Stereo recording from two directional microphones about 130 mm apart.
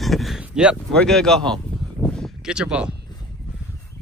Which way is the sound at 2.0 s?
5° left (ahead or behind).